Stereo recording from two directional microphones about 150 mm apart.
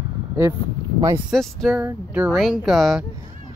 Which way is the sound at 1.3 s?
Centre (ahead or behind).